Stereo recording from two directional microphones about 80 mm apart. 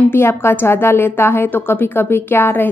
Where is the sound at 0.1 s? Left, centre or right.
Left.